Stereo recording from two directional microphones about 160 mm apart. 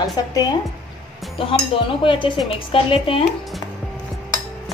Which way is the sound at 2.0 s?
30° left (ahead or behind).